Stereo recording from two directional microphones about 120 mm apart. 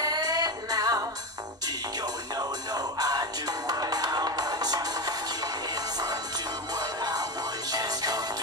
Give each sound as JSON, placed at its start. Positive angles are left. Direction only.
{"t": 0.0, "sound": "music", "side_deg": -30}
{"t": 2.3, "sound": "music", "side_deg": -35}
{"t": 6.7, "sound": "music", "side_deg": -35}